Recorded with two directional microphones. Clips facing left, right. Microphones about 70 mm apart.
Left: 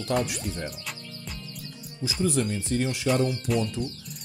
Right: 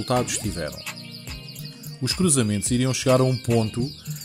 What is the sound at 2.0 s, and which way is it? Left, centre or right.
Speech, right.